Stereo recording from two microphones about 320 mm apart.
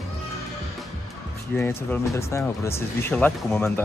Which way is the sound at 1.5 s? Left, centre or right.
Centre.